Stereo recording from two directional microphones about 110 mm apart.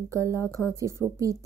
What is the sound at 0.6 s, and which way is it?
Speech, 25° left (ahead or behind).